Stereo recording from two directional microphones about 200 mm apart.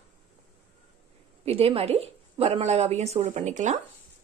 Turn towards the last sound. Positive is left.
turn(degrees=-35)  # may be behind; listen again after turning